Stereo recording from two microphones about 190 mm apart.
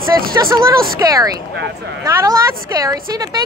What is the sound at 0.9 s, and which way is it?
A woman's voice, 15° right (ahead or behind).